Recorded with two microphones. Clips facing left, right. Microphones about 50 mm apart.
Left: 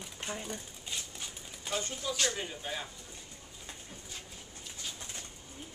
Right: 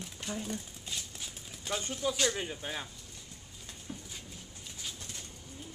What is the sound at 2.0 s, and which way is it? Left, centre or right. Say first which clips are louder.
Speech: right 6 dB; centre.